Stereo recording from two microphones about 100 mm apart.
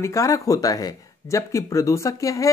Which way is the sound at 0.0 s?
30° left (ahead or behind).